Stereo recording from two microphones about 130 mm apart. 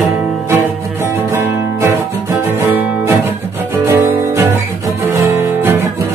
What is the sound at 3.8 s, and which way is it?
Music, 20° right (ahead or behind).